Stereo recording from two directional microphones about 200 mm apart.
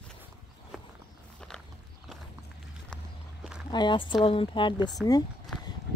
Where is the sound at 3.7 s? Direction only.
20° left (ahead or behind).